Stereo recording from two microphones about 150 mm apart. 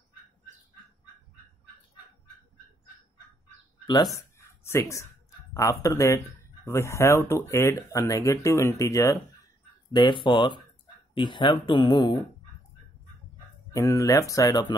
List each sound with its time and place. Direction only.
3.8 s a sound: 30° left (ahead or behind)
5.5 s speech: 20° left (ahead or behind)
9.9 s speech: 30° left (ahead or behind)
13.7 s speech: 20° left (ahead or behind)